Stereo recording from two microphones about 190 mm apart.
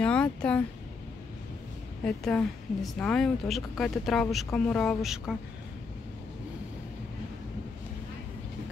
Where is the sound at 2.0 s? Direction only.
5° left (ahead or behind).